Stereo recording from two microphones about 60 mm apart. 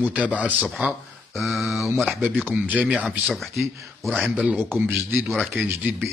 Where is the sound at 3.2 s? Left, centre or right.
Centre.